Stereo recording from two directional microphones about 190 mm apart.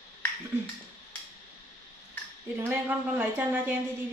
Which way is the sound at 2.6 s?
10° right (ahead or behind).